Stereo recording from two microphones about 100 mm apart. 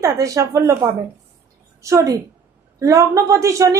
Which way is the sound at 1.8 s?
30° right (ahead or behind).